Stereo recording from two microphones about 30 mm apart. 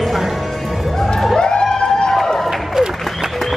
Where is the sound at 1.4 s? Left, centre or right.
Left.